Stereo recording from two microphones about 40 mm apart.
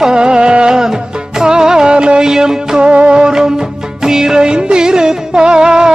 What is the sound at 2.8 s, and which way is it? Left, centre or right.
Music, right.